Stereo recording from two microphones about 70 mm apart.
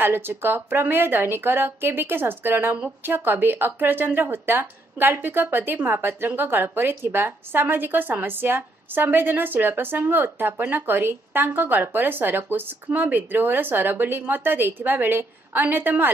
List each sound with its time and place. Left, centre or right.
0.0 s a woman's voice: right